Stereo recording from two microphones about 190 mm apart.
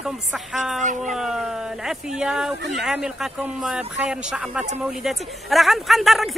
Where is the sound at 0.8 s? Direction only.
40° right (ahead or behind).